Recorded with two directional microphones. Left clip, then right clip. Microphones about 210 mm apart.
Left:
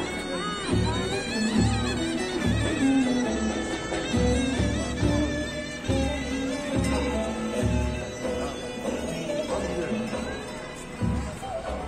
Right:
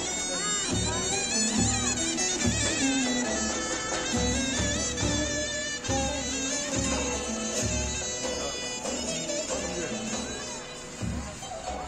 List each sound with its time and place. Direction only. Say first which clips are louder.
0.7 s music: left 2 dB; 20° right (ahead or behind)